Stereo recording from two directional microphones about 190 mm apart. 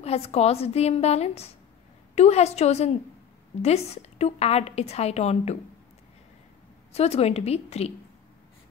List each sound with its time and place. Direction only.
0.0 s a woman's voice: 35° left (ahead or behind)
6.9 s a woman's voice: 35° left (ahead or behind)